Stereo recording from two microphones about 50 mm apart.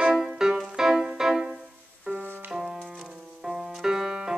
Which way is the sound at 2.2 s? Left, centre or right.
Right.